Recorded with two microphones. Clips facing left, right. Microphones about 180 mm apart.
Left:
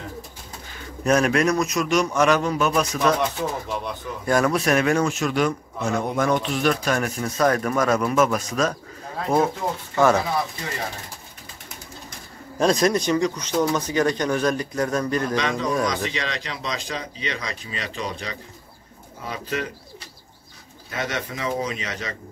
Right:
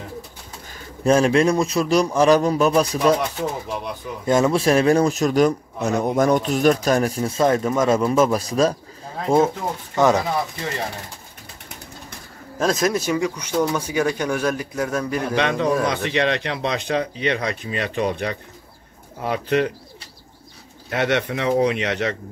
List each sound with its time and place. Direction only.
1.0 s a man's voice: 30° right (ahead or behind)
4.3 s a man's voice: 25° right (ahead or behind)
12.5 s speech: centre (ahead or behind)
15.3 s speech: 60° right (ahead or behind)
20.9 s speech: 65° right (ahead or behind)